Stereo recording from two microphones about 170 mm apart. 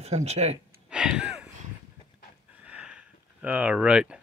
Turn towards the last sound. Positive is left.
turn(degrees=-5)  # may be behind; listen again after turning